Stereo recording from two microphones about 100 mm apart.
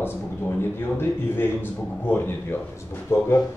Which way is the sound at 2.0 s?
20° left (ahead or behind).